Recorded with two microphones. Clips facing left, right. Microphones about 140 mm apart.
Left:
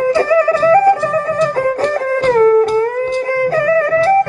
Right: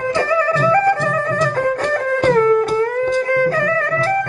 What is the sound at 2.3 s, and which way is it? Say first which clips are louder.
Music: left 5 dB; 35° left (ahead or behind).